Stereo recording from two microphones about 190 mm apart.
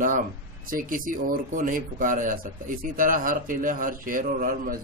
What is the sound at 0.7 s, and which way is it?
A man's voice, 45° right (ahead or behind).